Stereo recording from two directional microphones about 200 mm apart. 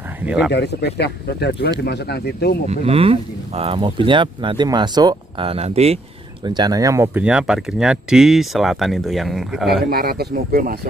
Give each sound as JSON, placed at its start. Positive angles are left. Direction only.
{"t": 0.5, "sound": "speech", "side_deg": 55}
{"t": 2.7, "sound": "speech", "side_deg": -30}
{"t": 9.8, "sound": "speech", "side_deg": -50}